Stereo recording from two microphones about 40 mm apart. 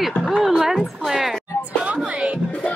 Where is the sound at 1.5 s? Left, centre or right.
Left.